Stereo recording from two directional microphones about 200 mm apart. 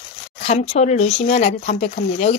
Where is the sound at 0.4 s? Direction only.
30° left (ahead or behind).